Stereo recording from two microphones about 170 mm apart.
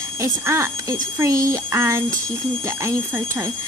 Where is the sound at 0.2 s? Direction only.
15° right (ahead or behind).